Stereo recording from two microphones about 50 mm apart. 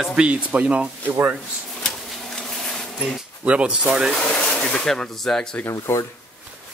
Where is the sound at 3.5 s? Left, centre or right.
Right.